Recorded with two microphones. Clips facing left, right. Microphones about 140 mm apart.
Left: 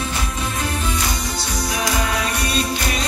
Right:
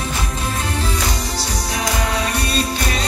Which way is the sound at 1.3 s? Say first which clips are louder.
Even; 30° right (ahead or behind).